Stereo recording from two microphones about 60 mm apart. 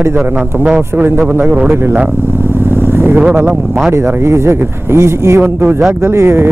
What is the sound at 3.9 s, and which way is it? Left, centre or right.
Speech, right.